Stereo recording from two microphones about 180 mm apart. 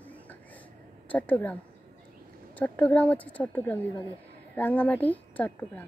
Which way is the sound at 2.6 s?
10° left (ahead or behind).